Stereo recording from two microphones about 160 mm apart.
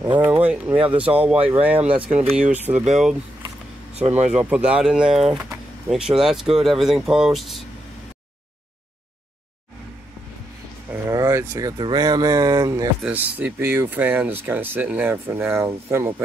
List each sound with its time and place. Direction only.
0.0 s speech: 30° right (ahead or behind)
0.3 s speech: 10° right (ahead or behind)
4.3 s speech: 10° right (ahead or behind)
5.5 s vehicle: centre (ahead or behind)
6.5 s speech: centre (ahead or behind)
10.9 s speech: 20° right (ahead or behind)